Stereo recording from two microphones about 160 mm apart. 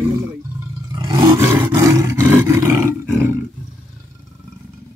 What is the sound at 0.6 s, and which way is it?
Roar, 20° right (ahead or behind).